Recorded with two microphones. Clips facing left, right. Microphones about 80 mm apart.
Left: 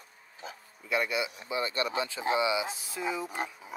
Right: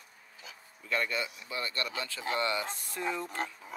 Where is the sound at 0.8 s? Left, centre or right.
Centre.